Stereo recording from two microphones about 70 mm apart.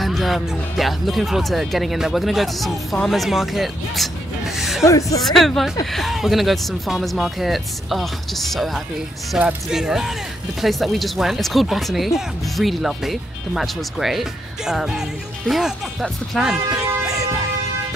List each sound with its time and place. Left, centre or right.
0.0 s speech: centre
4.6 s music: centre
4.8 s speech: left
5.2 s speech: centre
16.6 s a sound: centre